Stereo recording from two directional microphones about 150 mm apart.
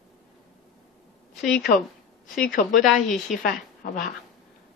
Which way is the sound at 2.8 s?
Centre (ahead or behind).